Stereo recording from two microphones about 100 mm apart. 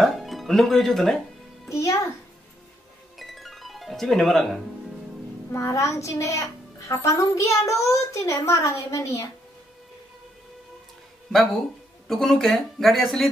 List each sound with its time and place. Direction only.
0.0 s music: centre (ahead or behind)
1.7 s a child's voice: 30° left (ahead or behind)
3.2 s music: centre (ahead or behind)
5.5 s a child's voice: 30° left (ahead or behind)
12.1 s speech: 5° left (ahead or behind)